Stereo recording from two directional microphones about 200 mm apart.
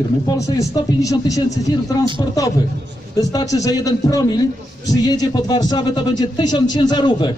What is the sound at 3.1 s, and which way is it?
A man's voice, 15° left (ahead or behind).